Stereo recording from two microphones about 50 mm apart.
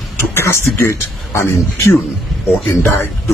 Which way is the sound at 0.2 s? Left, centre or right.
Left.